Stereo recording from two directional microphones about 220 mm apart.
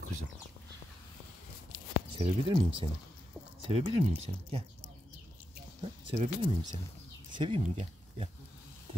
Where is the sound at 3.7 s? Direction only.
30° right (ahead or behind).